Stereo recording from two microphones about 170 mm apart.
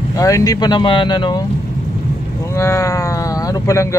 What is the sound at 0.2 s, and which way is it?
Speech, 20° left (ahead or behind).